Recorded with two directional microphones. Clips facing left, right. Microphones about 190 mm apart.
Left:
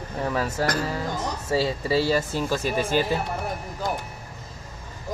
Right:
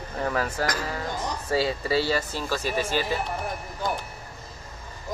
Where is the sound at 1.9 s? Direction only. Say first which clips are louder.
Left 4 dB; 45° left (ahead or behind).